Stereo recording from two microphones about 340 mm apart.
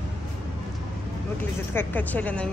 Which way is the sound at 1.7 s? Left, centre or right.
Centre.